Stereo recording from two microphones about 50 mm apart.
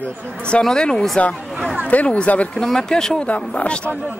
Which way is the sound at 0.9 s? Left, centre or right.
Centre.